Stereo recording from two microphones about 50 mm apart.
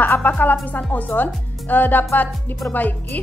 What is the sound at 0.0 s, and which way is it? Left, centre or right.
Speech, left.